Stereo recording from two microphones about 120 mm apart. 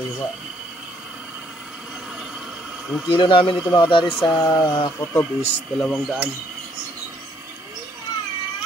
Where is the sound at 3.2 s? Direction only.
45° left (ahead or behind).